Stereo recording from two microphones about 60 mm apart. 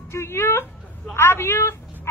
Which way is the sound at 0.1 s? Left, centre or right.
Left.